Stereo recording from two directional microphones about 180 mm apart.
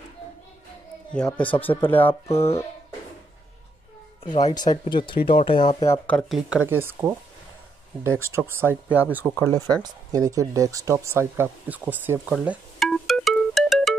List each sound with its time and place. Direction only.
1.1 s speech: 5° left (ahead or behind)
2.3 s speech: 35° left (ahead or behind)
4.2 s speech: 35° left (ahead or behind)
5.9 s speech: 5° left (ahead or behind); by 8.7 s 10° right (ahead or behind)
9.3 s speech: 10° left (ahead or behind)
9.8 s speech: 20° right (ahead or behind); by 13.9 s centre (ahead or behind)